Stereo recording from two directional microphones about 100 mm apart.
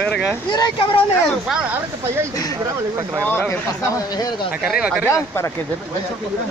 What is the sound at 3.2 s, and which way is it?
Speech, 20° left (ahead or behind).